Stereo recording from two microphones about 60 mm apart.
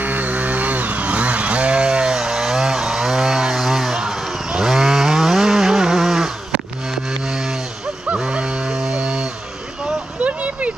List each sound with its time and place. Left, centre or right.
0.0 s chainsaw: right; by 6.3 s centre
6.9 s music: centre
8.1 s goose: centre
10.2 s a sound: right